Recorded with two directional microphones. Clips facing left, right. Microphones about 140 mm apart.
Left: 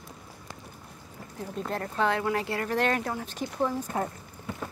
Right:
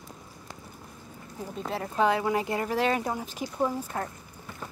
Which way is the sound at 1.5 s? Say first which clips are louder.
Right 1 dB; 5° right (ahead or behind).